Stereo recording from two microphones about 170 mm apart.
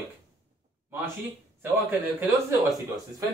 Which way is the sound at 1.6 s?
10° right (ahead or behind).